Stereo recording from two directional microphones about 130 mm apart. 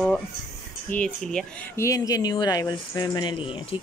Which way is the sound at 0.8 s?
10° left (ahead or behind).